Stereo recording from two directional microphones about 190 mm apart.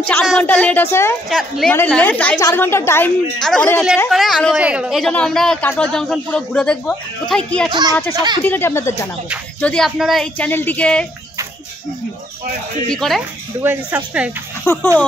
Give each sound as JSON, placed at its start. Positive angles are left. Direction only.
{"t": 0.0, "sound": "speech", "side_deg": 5}
{"t": 8.1, "sound": "speech", "side_deg": -20}
{"t": 8.5, "sound": "speech", "side_deg": 10}
{"t": 12.9, "sound": "speech", "side_deg": 0}
{"t": 13.6, "sound": "speech", "side_deg": -10}
{"t": 14.6, "sound": "speech", "side_deg": 15}